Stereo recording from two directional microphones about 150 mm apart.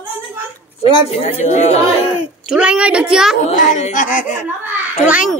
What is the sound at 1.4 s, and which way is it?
Speech, 45° left (ahead or behind).